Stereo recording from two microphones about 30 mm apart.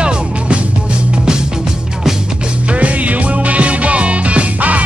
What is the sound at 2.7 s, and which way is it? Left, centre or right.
Music, right.